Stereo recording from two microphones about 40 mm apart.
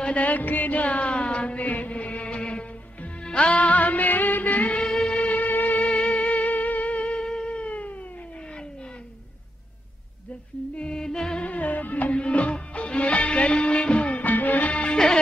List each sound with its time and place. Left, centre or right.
0.1 s music: left
4.8 s music: centre
5.2 s music: left
10.8 s music: centre
11.4 s music: left
12.1 s music: left
14.2 s music: left